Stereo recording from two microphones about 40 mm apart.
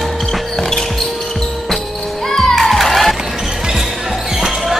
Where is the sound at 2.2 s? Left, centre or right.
Centre.